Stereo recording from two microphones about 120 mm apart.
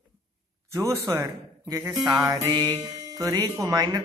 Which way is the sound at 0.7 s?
30° right (ahead or behind).